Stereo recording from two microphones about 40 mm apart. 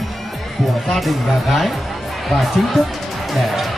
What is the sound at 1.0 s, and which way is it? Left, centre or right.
Speech, centre.